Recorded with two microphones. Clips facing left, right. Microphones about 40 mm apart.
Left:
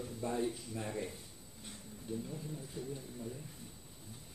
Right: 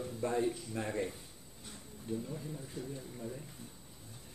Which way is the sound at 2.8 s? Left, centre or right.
Centre.